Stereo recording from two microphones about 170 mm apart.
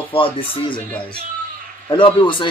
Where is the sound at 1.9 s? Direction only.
30° left (ahead or behind).